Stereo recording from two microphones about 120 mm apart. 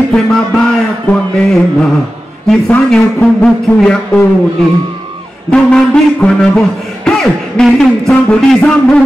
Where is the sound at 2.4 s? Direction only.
5° left (ahead or behind).